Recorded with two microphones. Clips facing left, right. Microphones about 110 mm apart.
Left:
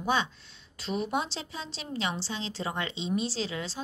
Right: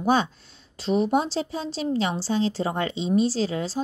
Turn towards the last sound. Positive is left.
turn(degrees=-40)  # may be behind; listen again after turning